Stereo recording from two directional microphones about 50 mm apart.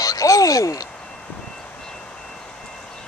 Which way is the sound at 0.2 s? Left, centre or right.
Left.